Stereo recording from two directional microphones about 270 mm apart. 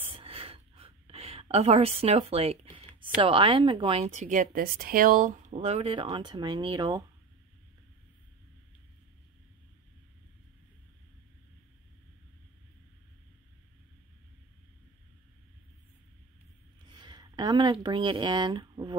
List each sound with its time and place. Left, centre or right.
0.0 s a sound: right
3.0 s speech: centre
16.9 s speech: centre